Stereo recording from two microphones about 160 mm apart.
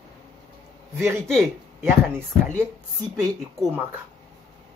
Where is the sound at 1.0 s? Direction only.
15° right (ahead or behind).